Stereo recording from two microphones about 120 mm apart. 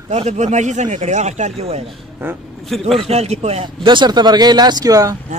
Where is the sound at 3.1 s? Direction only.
60° right (ahead or behind).